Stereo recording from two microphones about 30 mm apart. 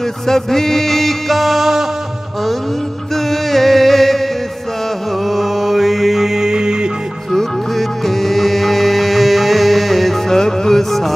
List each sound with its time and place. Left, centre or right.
0.3 s music: centre
3.3 s music: centre
5.3 s mantra: centre
6.4 s music: right
8.0 s music: centre
10.3 s music: centre